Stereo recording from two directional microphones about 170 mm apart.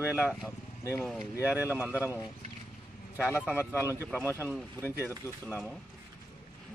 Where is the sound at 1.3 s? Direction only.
10° right (ahead or behind).